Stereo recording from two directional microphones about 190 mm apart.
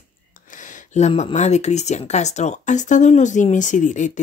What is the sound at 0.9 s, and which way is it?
Speech, 35° left (ahead or behind).